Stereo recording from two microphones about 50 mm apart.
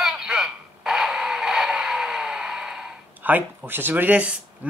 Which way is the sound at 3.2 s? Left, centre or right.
Right.